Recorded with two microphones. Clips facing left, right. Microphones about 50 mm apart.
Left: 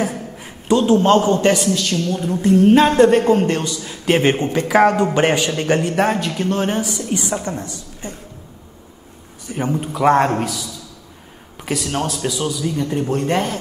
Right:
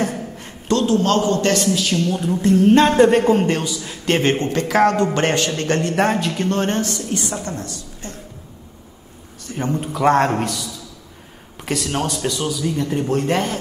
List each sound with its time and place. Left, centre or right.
0.0 s a man's voice: centre
1.6 s a woman's voice: centre
9.5 s speech: centre
9.8 s a woman's voice: centre